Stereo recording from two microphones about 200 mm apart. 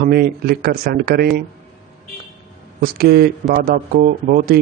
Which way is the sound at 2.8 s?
50° right (ahead or behind).